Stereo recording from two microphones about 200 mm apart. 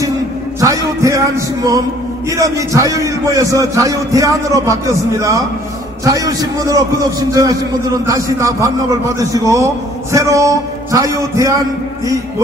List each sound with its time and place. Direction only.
0.6 s a man's voice: 15° right (ahead or behind)
6.0 s a man's voice: 15° right (ahead or behind)